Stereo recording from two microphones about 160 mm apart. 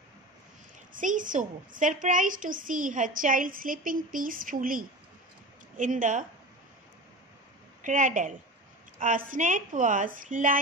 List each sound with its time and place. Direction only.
0.9 s a child's voice: 55° right (ahead or behind)
7.8 s a woman's voice: 50° right (ahead or behind)